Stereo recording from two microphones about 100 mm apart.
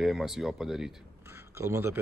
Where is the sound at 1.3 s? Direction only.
25° right (ahead or behind).